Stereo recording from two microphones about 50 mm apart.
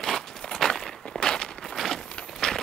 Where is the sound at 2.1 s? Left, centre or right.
Centre.